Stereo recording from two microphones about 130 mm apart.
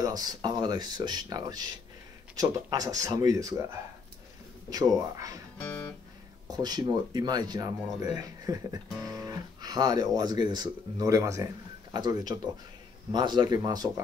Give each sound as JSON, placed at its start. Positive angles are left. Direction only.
{"t": 0.0, "sound": "speech", "side_deg": -30}
{"t": 4.6, "sound": "speech", "side_deg": -30}
{"t": 5.6, "sound": "music", "side_deg": 10}
{"t": 6.5, "sound": "speech", "side_deg": -35}